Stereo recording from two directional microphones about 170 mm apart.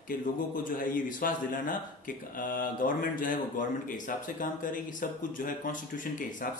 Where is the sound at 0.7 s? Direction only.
50° left (ahead or behind).